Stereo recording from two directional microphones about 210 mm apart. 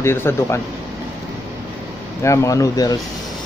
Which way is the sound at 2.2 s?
15° left (ahead or behind).